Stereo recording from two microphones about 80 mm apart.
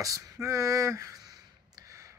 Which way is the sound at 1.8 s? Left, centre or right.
Right.